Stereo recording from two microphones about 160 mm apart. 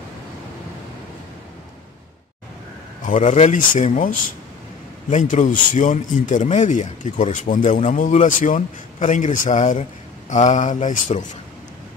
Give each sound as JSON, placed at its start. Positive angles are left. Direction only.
{"t": 3.1, "sound": "speech", "side_deg": 45}
{"t": 5.1, "sound": "speech", "side_deg": 50}